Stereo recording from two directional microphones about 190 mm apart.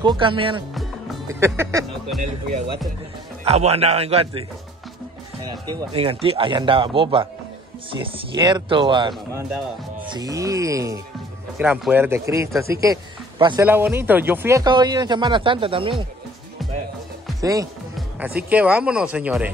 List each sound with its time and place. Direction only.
0.0 s speech: 25° right (ahead or behind)
1.3 s speech: 15° right (ahead or behind)
2.2 s a man's voice: 35° right (ahead or behind)
13.7 s speech: 10° right (ahead or behind); by 16.1 s 25° right (ahead or behind)
17.4 s speech: 20° right (ahead or behind)
18.5 s speech: 5° right (ahead or behind)